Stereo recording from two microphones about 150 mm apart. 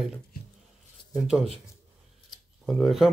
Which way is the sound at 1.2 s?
Centre (ahead or behind).